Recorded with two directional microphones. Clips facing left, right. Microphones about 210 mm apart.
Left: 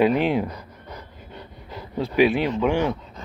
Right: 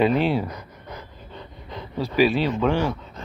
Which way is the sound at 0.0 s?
15° left (ahead or behind).